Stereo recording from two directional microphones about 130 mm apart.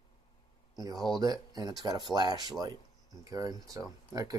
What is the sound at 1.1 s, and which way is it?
Speech, 30° right (ahead or behind).